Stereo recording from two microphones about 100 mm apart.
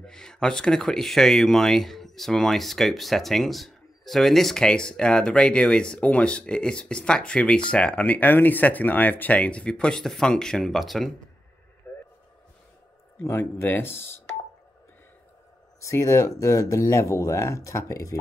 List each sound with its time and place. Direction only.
0.0 s speech: 5° left (ahead or behind)
11.9 s a sound: 15° left (ahead or behind)
13.2 s speech: 25° left (ahead or behind)
15.8 s speech: 30° left (ahead or behind)